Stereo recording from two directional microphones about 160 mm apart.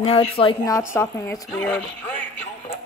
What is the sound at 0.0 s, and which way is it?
Speech, 35° left (ahead or behind).